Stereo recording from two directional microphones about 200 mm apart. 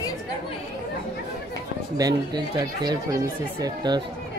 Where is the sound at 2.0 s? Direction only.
20° right (ahead or behind).